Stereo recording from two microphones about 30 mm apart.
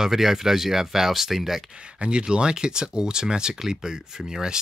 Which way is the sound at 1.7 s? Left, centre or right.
Right.